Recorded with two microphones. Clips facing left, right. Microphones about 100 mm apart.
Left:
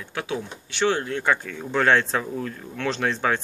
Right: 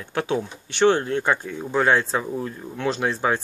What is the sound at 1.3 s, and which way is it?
Speech, 15° right (ahead or behind).